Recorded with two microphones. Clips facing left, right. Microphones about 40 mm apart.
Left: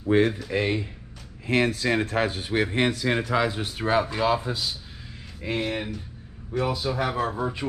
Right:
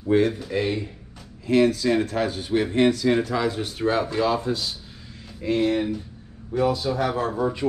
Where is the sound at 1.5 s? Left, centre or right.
Left.